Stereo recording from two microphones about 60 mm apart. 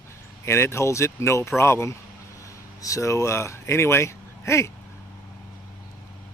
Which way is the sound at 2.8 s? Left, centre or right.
Left.